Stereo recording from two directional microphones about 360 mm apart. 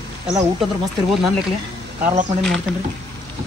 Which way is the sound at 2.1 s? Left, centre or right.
Centre.